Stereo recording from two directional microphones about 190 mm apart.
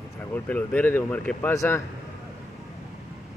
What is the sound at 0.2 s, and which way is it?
Speech, 10° left (ahead or behind).